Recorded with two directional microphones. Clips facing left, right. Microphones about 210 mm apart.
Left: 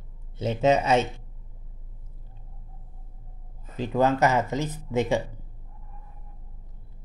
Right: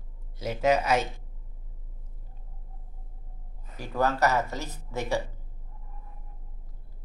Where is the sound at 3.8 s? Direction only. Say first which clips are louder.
Left 4 dB; 20° left (ahead or behind).